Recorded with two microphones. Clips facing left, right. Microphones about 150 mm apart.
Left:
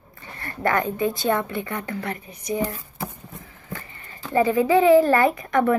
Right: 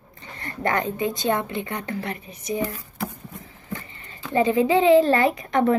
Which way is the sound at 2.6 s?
25° left (ahead or behind).